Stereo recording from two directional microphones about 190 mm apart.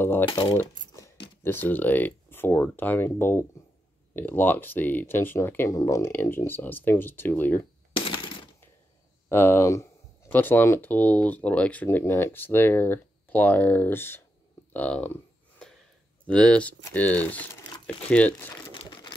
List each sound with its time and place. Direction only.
0.0 s speech: 10° left (ahead or behind)
0.6 s coin: 15° left (ahead or behind)
1.4 s speech: 10° left (ahead or behind)
9.3 s speech: 15° left (ahead or behind)
16.3 s speech: 5° left (ahead or behind)
18.7 s crumpling: 25° left (ahead or behind)